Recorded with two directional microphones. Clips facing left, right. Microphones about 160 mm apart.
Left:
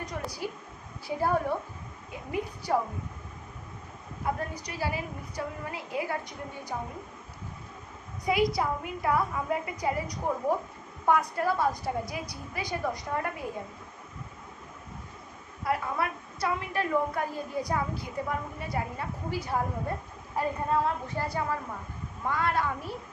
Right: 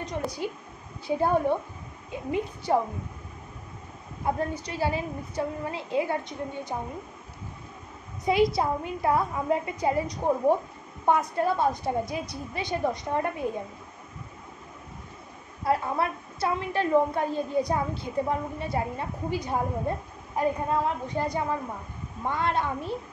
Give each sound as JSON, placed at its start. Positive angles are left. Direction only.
{"t": 0.4, "sound": "a woman's voice", "side_deg": -20}
{"t": 4.2, "sound": "a woman's voice", "side_deg": -25}
{"t": 8.3, "sound": "a woman's voice", "side_deg": -25}
{"t": 15.6, "sound": "a woman's voice", "side_deg": -30}